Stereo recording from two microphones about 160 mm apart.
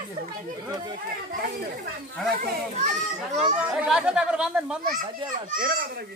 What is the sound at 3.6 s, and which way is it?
A child's voice, 10° right (ahead or behind).